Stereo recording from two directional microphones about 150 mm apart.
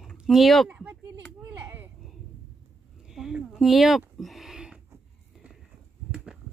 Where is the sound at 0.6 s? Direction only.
10° right (ahead or behind).